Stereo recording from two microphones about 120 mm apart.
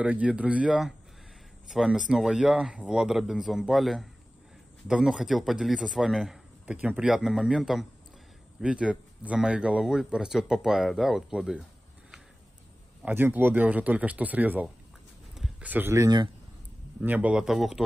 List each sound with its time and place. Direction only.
0.0 s speech: 10° right (ahead or behind)
6.6 s speech: 10° right (ahead or behind)
13.0 s speech: 15° right (ahead or behind)
17.0 s speech: 10° right (ahead or behind)